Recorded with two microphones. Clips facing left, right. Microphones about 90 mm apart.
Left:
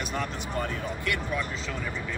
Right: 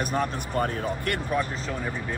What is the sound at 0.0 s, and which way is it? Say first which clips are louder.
Speech: right 5 dB; 40° right (ahead or behind).